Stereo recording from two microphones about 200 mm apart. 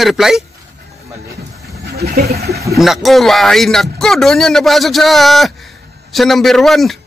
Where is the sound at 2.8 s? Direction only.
Centre (ahead or behind).